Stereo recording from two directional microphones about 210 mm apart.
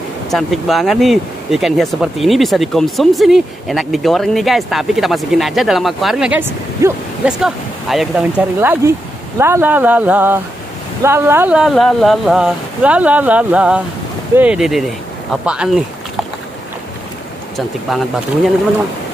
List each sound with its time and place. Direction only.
0.3 s speech: centre (ahead or behind)
17.6 s speech: centre (ahead or behind)